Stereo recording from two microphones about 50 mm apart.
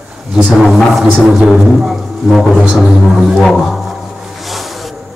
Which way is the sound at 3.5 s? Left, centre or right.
Centre.